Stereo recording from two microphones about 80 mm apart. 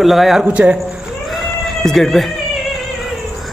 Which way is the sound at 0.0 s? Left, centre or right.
Centre.